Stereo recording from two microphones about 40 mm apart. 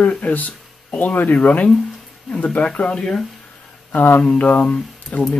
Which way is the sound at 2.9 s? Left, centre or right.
Centre.